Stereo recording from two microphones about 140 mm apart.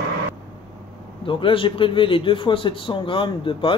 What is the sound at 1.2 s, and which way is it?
Speech, 40° left (ahead or behind).